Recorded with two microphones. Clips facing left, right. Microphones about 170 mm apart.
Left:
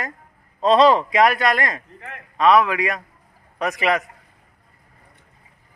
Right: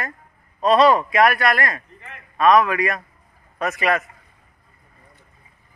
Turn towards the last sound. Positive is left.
turn(degrees=15)  # may be behind; listen again after turning